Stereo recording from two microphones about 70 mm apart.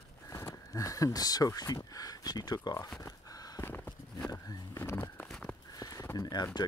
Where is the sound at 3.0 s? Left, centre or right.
Left.